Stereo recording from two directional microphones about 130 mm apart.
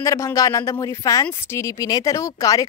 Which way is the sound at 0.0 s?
25° left (ahead or behind).